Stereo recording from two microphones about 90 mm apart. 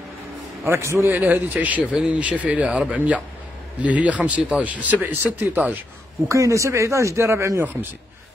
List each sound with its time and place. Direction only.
0.7 s speech: 30° right (ahead or behind)
6.2 s a man's voice: 35° right (ahead or behind)